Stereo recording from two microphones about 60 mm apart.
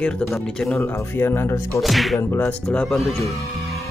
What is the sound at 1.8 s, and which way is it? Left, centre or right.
Speech, centre.